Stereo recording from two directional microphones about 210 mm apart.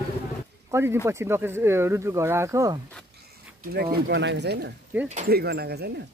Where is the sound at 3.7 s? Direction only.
45° right (ahead or behind).